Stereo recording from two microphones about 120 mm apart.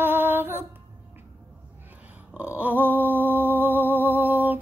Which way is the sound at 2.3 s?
10° right (ahead or behind).